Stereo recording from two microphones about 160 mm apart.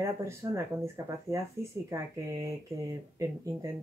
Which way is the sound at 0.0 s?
20° right (ahead or behind).